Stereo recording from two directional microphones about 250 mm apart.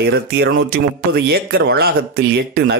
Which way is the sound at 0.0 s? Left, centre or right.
Right.